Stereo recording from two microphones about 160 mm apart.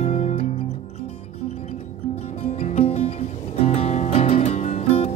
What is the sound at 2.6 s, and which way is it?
Music, 40° left (ahead or behind).